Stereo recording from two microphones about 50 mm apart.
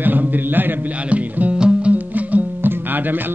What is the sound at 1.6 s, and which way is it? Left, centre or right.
Music, centre.